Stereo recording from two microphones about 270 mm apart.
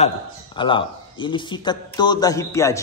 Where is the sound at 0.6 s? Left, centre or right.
Centre.